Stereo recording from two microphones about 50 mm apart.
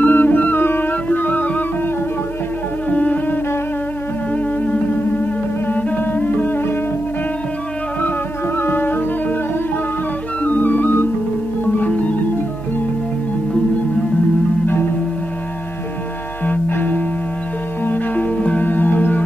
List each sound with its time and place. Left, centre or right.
0.0 s music: left
2.9 s music: left
5.7 s music: left
8.5 s music: left
10.4 s music: left
16.4 s music: left